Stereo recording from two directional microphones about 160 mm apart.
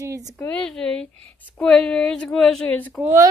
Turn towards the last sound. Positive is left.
turn(degrees=-15)  # may be behind; listen again after turning